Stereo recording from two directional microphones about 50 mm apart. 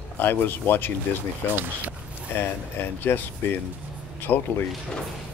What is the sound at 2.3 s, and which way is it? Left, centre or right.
Speech, left.